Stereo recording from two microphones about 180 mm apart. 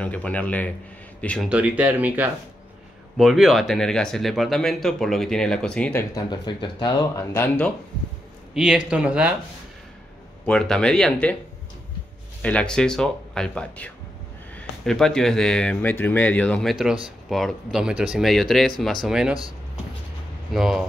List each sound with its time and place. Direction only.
0.0 s a man's voice: 5° left (ahead or behind)
1.5 s speech: 10° right (ahead or behind); by 6.2 s 10° left (ahead or behind)
6.3 s speech: 25° left (ahead or behind)
7.3 s a man's voice: 10° left (ahead or behind)
8.5 s speech: 5° right (ahead or behind)
10.4 s speech: 5° left (ahead or behind)
12.4 s speech: 5° left (ahead or behind)
20.5 s speech: centre (ahead or behind)